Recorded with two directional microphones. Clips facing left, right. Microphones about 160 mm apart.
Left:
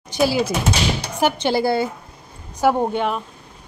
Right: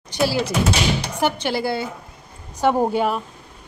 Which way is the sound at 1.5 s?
40° left (ahead or behind).